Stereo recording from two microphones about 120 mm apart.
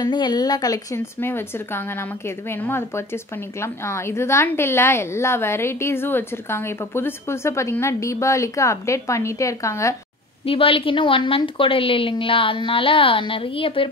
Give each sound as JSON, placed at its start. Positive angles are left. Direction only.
{"t": 0.0, "sound": "speech", "side_deg": 35}
{"t": 0.9, "sound": "a woman's voice", "side_deg": 20}
{"t": 10.4, "sound": "a woman's voice", "side_deg": 50}